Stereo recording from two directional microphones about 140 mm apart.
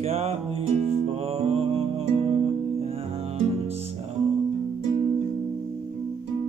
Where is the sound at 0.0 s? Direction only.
50° right (ahead or behind).